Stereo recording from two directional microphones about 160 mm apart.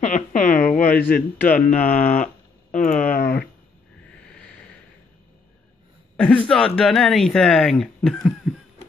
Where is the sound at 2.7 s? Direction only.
55° left (ahead or behind).